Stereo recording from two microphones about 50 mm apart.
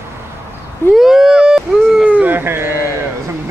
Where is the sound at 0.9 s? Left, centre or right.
Centre.